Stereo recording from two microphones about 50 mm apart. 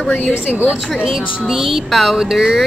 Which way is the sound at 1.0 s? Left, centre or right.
Centre.